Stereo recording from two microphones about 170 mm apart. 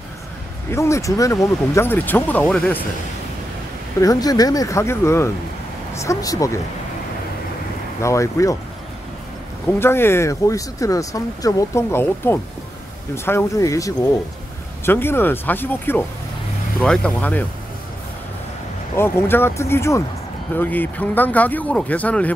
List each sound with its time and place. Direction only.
0.7 s speech: 15° left (ahead or behind)
4.0 s speech: 20° left (ahead or behind)
8.0 s speech: 20° left (ahead or behind)
9.7 s speech: 15° left (ahead or behind)
18.9 s speech: 15° left (ahead or behind)